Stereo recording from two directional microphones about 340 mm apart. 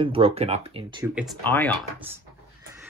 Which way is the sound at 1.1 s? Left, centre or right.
Centre.